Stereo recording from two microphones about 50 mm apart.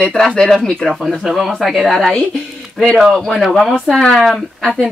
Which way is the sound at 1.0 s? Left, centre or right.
Centre.